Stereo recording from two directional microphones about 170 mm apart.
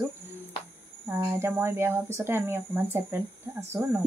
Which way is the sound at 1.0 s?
15° right (ahead or behind).